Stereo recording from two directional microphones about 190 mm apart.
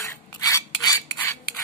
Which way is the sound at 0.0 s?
15° left (ahead or behind).